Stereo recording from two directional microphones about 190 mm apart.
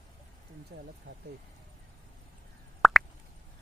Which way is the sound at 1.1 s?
70° right (ahead or behind).